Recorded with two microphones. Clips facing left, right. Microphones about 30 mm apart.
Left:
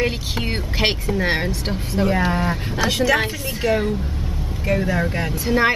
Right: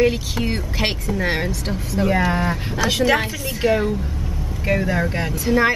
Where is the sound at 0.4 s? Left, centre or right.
Left.